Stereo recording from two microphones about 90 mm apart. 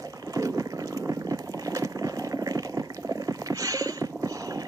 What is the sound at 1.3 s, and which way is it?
Water, 40° right (ahead or behind).